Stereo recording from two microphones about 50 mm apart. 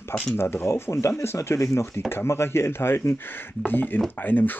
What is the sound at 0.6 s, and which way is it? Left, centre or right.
Speech, left.